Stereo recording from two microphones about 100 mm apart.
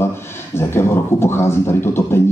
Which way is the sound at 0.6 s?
25° left (ahead or behind).